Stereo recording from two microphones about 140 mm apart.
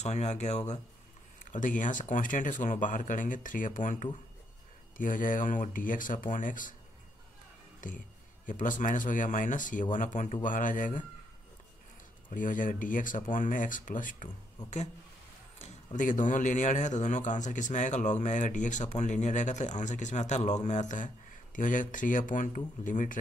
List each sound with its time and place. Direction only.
0.0 s a man's voice: 55° left (ahead or behind)
7.8 s speech: 70° left (ahead or behind)
12.3 s speech: 70° left (ahead or behind)
15.6 s a man's voice: 65° left (ahead or behind)